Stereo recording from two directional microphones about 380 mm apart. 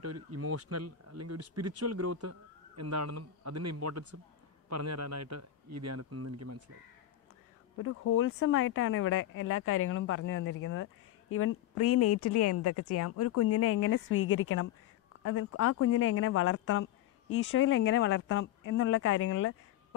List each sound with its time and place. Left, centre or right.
0.0 s speech: right
7.8 s speech: left